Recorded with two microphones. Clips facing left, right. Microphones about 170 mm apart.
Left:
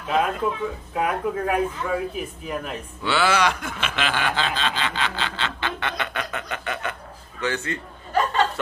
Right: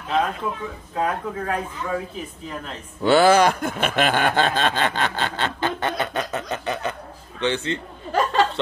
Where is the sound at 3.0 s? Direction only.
45° right (ahead or behind).